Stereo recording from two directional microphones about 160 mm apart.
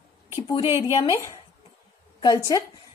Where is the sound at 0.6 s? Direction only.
15° right (ahead or behind).